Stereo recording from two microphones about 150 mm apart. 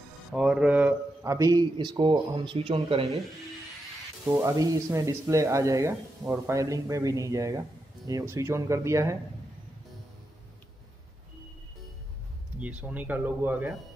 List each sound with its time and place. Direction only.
0.3 s speech: 5° right (ahead or behind); by 3.2 s 40° right (ahead or behind)
4.3 s speech: 20° right (ahead or behind)
12.5 s speech: 10° right (ahead or behind)